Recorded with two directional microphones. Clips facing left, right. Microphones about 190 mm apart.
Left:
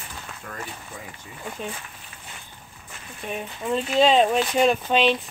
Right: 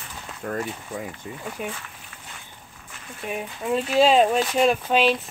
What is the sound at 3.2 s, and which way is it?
Speech, 10° right (ahead or behind).